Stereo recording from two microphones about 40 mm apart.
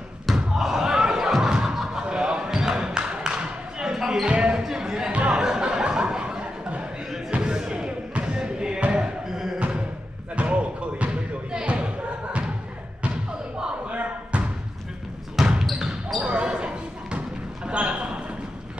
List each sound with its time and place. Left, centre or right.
0.6 s slam: centre
1.4 s a sound: centre
4.3 s basketball bounce: right
5.1 s a sound: right
5.4 s chuckle: centre
7.2 s basketball bounce: right
9.3 s music: centre
10.3 s basketball bounce: right
13.0 s thump: right
13.8 s slam: right
15.4 s basketball bounce: centre
16.3 s basketball bounce: right
17.6 s a sound: right